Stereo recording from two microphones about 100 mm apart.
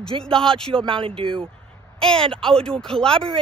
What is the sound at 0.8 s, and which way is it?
Speech, 60° right (ahead or behind).